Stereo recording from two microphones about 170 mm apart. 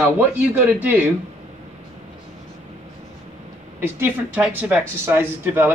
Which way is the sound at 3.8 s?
10° right (ahead or behind).